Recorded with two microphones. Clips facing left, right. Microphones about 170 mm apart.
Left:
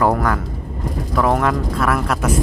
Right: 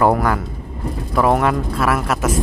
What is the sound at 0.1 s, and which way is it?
Vehicle, 10° right (ahead or behind).